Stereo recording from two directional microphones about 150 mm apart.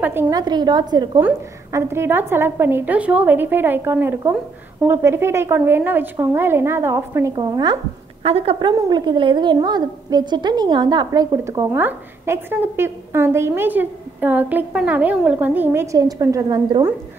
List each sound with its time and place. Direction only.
0.0 s a woman's voice: 15° right (ahead or behind)
0.3 s a woman's voice: 25° right (ahead or behind)
1.2 s a woman's voice: 15° right (ahead or behind)
8.2 s a woman's voice: 40° right (ahead or behind)